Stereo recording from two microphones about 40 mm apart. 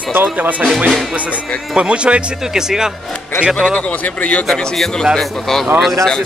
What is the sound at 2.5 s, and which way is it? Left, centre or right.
Speech, centre.